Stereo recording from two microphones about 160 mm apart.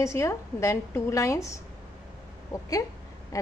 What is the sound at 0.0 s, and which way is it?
A woman's voice, 20° left (ahead or behind).